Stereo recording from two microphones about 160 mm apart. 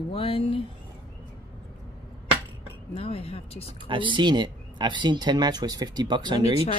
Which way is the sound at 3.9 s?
30° right (ahead or behind).